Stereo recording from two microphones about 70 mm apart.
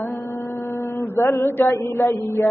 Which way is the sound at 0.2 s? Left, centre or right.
Left.